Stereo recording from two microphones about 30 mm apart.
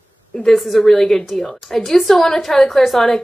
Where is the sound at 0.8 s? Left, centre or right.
Centre.